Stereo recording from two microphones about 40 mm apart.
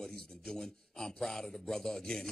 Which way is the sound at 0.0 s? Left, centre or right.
Centre.